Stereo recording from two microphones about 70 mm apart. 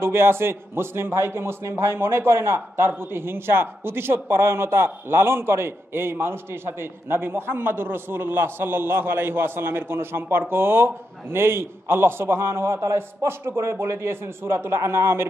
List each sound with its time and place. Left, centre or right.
0.0 s a man's voice: right